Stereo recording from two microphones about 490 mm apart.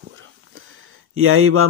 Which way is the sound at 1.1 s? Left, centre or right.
Right.